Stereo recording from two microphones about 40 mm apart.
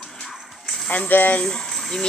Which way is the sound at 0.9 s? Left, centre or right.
Left.